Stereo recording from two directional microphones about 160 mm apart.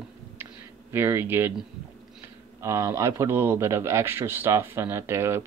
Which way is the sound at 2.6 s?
20° right (ahead or behind).